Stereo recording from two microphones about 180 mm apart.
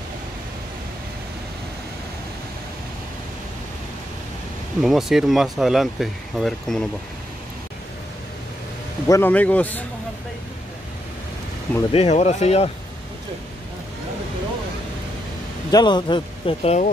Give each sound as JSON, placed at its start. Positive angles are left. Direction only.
{"t": 4.8, "sound": "speech", "side_deg": 0}
{"t": 9.0, "sound": "a man's voice", "side_deg": 15}
{"t": 11.9, "sound": "speech", "side_deg": 35}
{"t": 15.7, "sound": "speech", "side_deg": 25}